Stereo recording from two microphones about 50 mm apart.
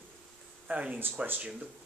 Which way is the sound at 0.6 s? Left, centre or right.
Right.